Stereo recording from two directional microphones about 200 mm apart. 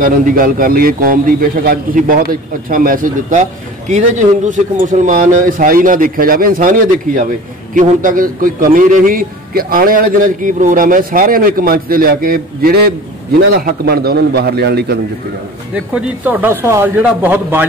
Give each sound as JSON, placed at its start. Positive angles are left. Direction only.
{"t": 0.0, "sound": "a man's voice", "side_deg": -45}
{"t": 15.7, "sound": "a man's voice", "side_deg": -5}